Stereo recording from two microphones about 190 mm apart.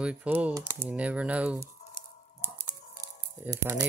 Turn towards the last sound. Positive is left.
turn(degrees=-20)  # may be behind; listen again after turning